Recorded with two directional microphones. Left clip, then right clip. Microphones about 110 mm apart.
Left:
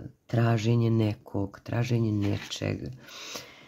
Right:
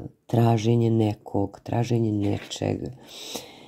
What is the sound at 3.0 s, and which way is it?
Speech, 5° right (ahead or behind).